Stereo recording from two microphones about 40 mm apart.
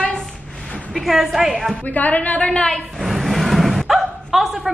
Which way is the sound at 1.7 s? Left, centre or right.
Left.